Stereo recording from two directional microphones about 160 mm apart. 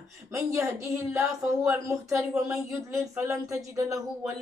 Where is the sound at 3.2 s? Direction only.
20° right (ahead or behind).